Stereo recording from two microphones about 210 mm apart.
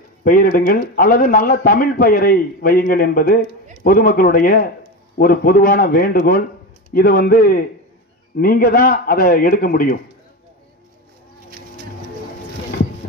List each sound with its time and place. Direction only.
0.2 s speech: 40° left (ahead or behind)